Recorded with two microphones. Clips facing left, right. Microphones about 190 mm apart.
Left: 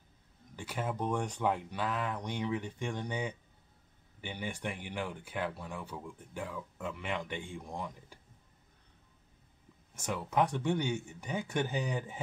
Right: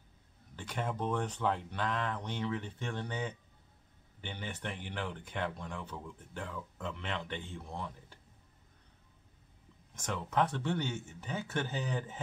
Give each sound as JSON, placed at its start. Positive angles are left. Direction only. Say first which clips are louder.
{"t": 0.6, "sound": "speech", "louder": "left 1 dB", "side_deg": 5}
{"t": 9.9, "sound": "speech", "louder": "left 1 dB", "side_deg": 10}